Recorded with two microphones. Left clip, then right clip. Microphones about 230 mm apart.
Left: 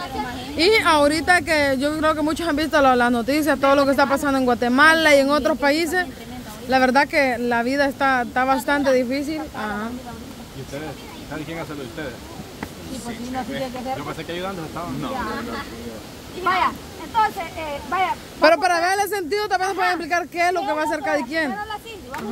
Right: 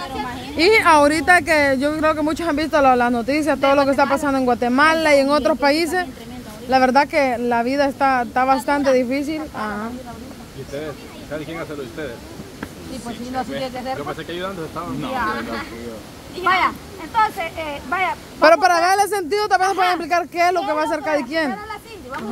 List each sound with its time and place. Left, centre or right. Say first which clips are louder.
0.1 s speech: right 1 dB; centre
16.4 s speech: right 3 dB; centre
18.4 s speech: right 3 dB; centre